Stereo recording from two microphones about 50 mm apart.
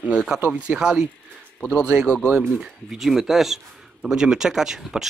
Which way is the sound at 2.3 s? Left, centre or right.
Centre.